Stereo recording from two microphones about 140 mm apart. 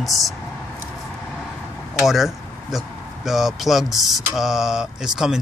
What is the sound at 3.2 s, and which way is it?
Speech, centre (ahead or behind).